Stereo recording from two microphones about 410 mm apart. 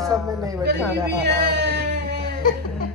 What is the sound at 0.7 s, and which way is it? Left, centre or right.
Speech, right.